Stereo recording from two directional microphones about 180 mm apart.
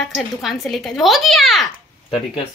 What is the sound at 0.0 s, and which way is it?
A woman's voice, centre (ahead or behind).